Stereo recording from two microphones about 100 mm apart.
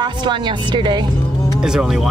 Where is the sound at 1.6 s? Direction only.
5° right (ahead or behind).